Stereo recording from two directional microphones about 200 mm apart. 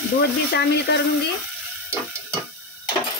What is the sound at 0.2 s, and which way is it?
Speech, 55° left (ahead or behind).